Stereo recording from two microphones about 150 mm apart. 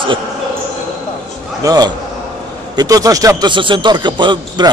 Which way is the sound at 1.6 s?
25° right (ahead or behind).